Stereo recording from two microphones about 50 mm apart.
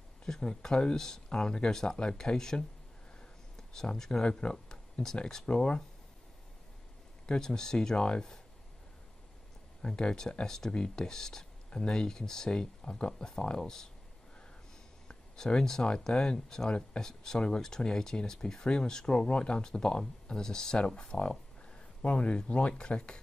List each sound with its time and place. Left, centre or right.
0.2 s speech: centre
7.2 s speech: centre
9.8 s speech: centre
15.0 s speech: centre